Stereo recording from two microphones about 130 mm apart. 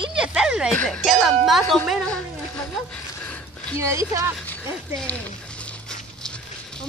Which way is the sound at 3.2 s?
10° left (ahead or behind).